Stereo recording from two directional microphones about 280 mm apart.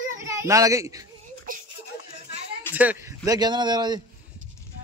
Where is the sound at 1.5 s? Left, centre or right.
Right.